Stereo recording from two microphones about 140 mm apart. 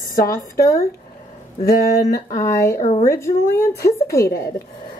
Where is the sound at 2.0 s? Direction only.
25° left (ahead or behind).